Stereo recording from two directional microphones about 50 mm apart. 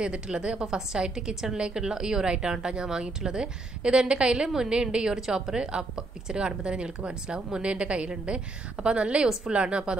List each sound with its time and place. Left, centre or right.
0.0 s a woman's voice: right